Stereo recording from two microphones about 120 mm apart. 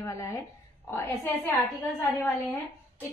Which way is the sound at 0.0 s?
25° left (ahead or behind).